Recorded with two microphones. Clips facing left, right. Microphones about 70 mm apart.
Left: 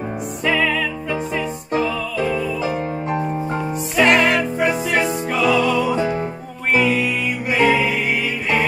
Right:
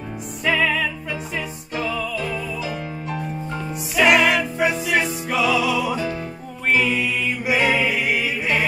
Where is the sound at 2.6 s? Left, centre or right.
Left.